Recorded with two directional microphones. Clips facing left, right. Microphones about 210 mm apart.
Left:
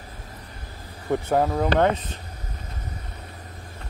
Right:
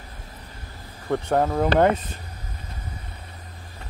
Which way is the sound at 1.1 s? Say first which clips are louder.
Even; centre (ahead or behind).